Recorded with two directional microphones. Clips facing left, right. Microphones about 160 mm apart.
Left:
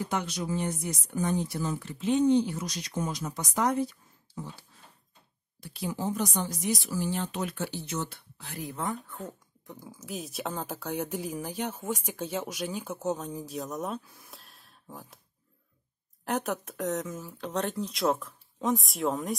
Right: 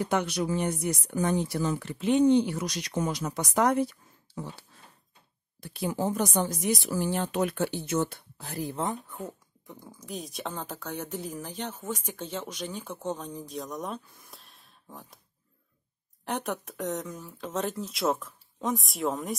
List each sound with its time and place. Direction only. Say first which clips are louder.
0.0 s speech: right 4 dB; 65° right (ahead or behind)
5.6 s speech: right 4 dB; 55° right (ahead or behind); by 9.3 s 15° right (ahead or behind)
9.7 s speech: left 1 dB; 5° left (ahead or behind)
16.3 s speech: left 2 dB; centre (ahead or behind)